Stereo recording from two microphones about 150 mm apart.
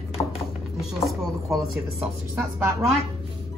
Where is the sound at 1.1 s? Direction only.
Centre (ahead or behind).